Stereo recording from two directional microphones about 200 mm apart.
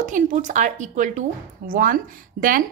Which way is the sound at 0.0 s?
40° right (ahead or behind).